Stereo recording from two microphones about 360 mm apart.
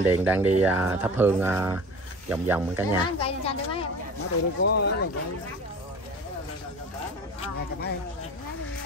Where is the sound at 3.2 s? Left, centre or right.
Centre.